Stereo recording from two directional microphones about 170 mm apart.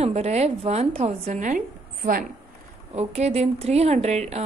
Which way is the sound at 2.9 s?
40° right (ahead or behind).